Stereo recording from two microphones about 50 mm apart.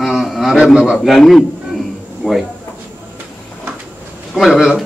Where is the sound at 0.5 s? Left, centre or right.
Centre.